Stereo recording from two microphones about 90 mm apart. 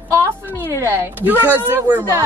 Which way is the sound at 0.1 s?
25° right (ahead or behind).